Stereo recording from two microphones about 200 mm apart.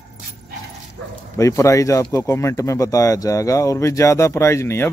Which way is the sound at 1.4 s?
15° left (ahead or behind).